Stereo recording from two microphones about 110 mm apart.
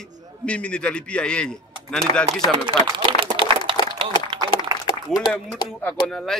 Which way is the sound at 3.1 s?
50° right (ahead or behind).